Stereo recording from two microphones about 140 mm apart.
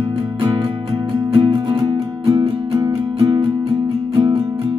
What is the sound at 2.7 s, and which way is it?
Music, 25° right (ahead or behind).